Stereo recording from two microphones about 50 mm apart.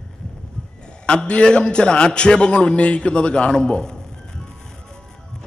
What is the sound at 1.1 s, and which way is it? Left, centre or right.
A man's voice, centre.